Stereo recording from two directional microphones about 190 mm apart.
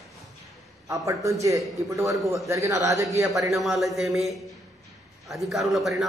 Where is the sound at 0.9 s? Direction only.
15° right (ahead or behind).